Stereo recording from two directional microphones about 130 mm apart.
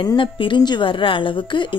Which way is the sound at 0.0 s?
35° left (ahead or behind).